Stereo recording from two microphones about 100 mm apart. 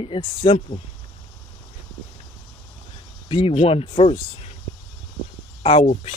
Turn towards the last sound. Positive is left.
turn(degrees=90)